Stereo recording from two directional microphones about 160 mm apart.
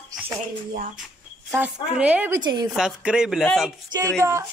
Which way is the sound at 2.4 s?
25° right (ahead or behind).